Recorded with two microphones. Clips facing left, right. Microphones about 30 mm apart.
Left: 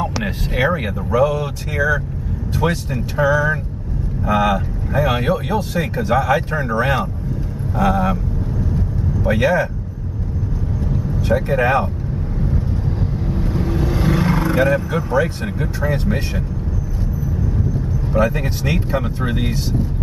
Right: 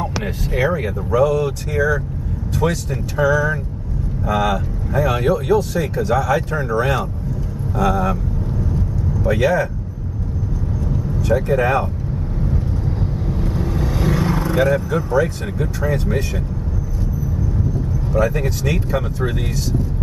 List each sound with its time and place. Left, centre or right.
0.5 s speech: left
1.1 s speech: left
9.2 s speech: left
11.1 s speech: left
12.4 s vehicle: centre; by 14.6 s left
14.7 s speech: left
18.3 s speech: centre